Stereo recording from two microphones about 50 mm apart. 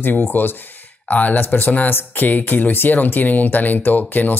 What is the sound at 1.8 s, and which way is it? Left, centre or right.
Speech, left.